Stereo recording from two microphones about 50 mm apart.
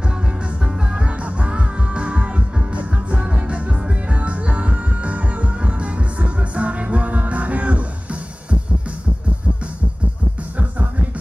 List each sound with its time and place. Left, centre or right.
1.4 s music: right
10.6 s music: right